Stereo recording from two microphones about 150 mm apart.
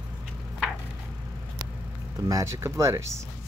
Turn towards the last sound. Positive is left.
turn(degrees=-20)  # may be behind; listen again after turning